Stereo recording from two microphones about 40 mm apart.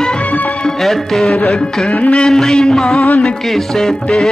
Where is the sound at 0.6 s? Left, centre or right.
Centre.